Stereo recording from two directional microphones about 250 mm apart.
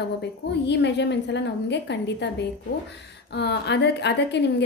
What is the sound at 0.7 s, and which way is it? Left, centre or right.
A woman's voice, left.